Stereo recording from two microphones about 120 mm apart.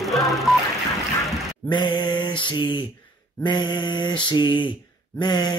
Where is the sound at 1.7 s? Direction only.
40° left (ahead or behind).